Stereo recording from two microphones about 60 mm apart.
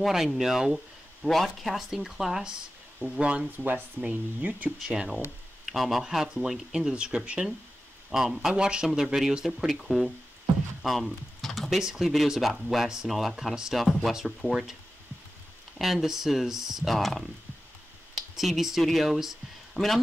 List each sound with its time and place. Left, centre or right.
0.0 s speech: centre
3.5 s speech: right
4.8 s speech: centre
5.7 s speech: centre
15.8 s speech: centre